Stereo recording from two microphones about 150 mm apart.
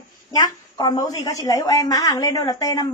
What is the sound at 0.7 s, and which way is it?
A woman's voice, 25° left (ahead or behind).